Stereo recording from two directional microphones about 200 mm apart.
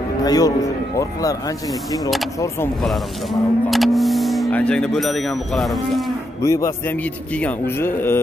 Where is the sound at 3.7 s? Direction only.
Centre (ahead or behind).